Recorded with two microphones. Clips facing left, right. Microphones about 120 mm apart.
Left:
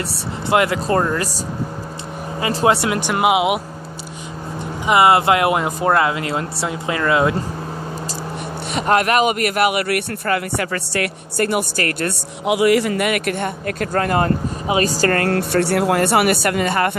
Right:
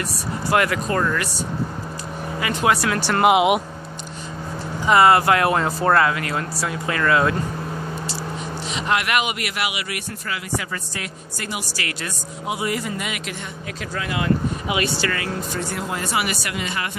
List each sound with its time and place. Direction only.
0.5 s speech: 25° left (ahead or behind)
2.4 s speech: 30° left (ahead or behind)
3.3 s speech: centre (ahead or behind)
4.8 s speech: 20° left (ahead or behind)
8.7 s speech: 45° left (ahead or behind)
12.4 s speech: 80° left; by 15.3 s 50° left (ahead or behind)
15.3 s speech: 70° left (ahead or behind); by 16.9 s 50° left (ahead or behind)